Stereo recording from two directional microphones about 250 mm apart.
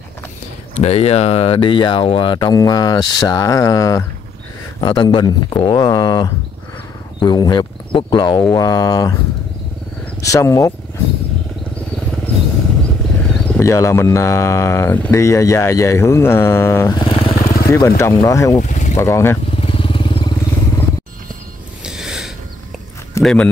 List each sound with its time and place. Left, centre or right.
0.7 s speech: left
10.2 s speech: centre
13.3 s speech: centre
17.4 s vehicle: left
17.6 s speech: centre
18.6 s boat: left
18.9 s vehicle: centre
21.8 s a sound: centre
23.1 s a man's voice: centre